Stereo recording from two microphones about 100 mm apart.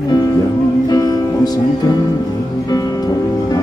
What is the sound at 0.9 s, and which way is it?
Music, 40° left (ahead or behind).